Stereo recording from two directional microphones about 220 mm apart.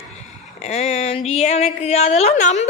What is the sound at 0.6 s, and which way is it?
Speech, 30° left (ahead or behind).